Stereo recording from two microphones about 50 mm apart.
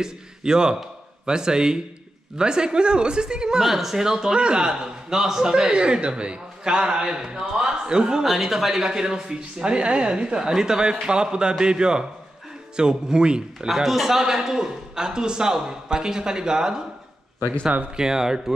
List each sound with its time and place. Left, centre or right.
0.0 s a man's voice: centre
8.3 s speech: centre
13.7 s speech: centre
17.9 s speech: centre